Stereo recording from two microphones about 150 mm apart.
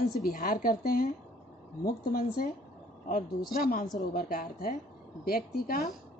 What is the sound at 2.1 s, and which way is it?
A woman's voice, 85° left.